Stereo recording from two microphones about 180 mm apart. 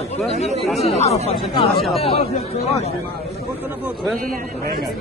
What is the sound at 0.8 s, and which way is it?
Speech, 35° left (ahead or behind).